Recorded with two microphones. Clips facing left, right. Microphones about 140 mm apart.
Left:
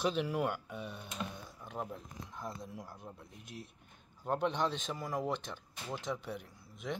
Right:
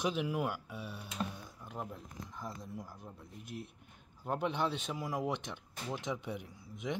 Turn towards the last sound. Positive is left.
turn(degrees=-15)  # may be behind; listen again after turning